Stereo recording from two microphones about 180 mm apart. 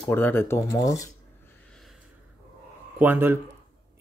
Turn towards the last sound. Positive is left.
turn(degrees=-10)  # may be behind; listen again after turning